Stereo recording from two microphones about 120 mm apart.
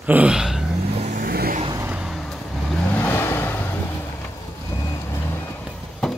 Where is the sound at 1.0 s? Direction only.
90° right.